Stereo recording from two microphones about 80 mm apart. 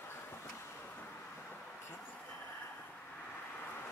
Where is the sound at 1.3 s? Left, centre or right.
Centre.